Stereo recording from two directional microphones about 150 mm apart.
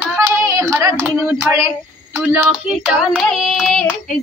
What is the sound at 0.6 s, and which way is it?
Speech, 20° right (ahead or behind).